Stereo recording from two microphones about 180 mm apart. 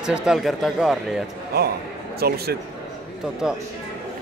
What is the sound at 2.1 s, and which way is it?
Speech, 60° right (ahead or behind).